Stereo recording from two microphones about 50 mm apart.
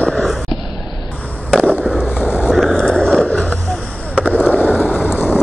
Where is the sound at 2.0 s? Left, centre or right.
Left.